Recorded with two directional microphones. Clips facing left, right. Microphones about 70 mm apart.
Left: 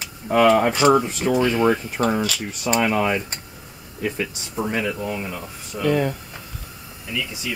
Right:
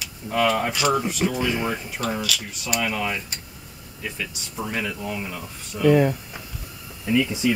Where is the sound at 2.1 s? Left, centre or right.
Left.